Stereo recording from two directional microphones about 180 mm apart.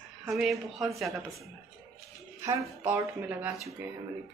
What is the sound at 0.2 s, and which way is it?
A woman's voice, centre (ahead or behind).